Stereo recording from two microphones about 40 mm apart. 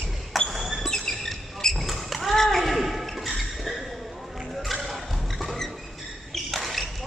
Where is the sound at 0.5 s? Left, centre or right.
Centre.